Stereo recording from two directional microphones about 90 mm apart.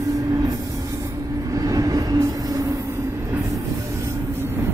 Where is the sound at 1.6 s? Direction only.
40° right (ahead or behind).